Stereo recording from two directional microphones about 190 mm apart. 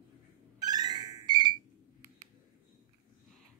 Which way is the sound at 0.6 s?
20° right (ahead or behind).